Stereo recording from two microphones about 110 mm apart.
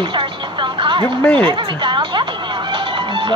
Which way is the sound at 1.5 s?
45° right (ahead or behind).